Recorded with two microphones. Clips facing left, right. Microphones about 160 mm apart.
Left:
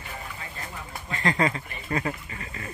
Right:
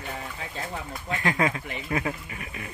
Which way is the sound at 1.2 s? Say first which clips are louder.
Left 1 dB; 5° right (ahead or behind).